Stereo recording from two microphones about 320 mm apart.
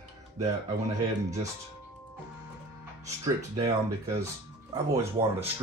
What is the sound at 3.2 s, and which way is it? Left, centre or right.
Speech, centre.